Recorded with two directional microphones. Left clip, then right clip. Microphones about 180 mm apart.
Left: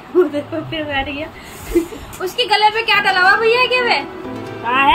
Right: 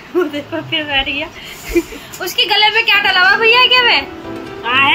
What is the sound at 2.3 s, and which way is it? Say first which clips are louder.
A woman's voice: right 2 dB; 10° right (ahead or behind).